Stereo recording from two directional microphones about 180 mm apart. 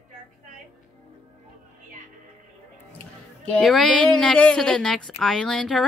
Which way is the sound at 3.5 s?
5° left (ahead or behind).